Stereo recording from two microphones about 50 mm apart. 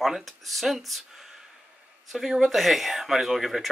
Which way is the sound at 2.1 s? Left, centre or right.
Centre.